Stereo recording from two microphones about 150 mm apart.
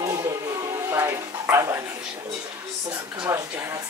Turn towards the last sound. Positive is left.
turn(degrees=-15)  # may be behind; listen again after turning